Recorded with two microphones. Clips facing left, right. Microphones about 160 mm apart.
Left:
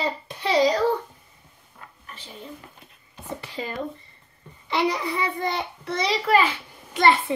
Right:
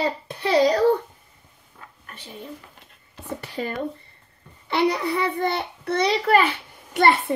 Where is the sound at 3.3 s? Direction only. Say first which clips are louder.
Right 3 dB; 60° right (ahead or behind).